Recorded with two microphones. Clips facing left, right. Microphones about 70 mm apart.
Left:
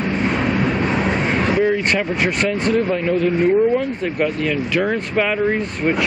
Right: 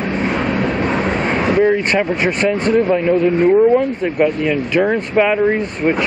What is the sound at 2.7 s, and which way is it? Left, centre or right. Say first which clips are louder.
Speech: right 6 dB; centre.